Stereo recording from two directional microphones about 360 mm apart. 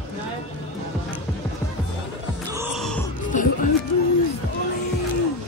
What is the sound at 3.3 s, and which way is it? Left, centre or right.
Music, left.